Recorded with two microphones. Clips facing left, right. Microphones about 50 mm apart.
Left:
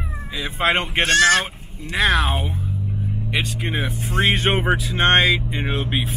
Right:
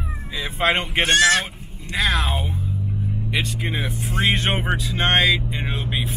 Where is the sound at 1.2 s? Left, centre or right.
Left.